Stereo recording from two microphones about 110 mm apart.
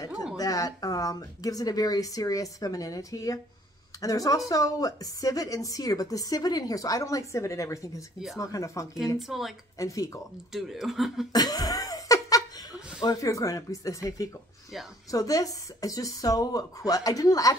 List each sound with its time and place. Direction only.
0.4 s a woman's voice: 30° left (ahead or behind)
9.3 s speech: 5° right (ahead or behind)
9.8 s speech: 30° left (ahead or behind)
10.5 s speech: centre (ahead or behind)
11.3 s laughter: 35° left (ahead or behind)
13.0 s a woman's voice: 30° left (ahead or behind)